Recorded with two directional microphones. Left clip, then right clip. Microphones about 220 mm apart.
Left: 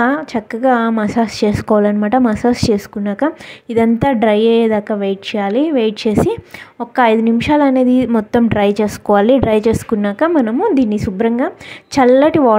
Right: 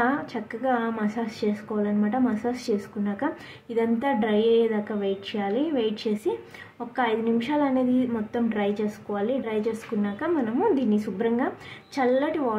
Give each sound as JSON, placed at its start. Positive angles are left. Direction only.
{"t": 0.0, "sound": "a woman's voice", "side_deg": 40}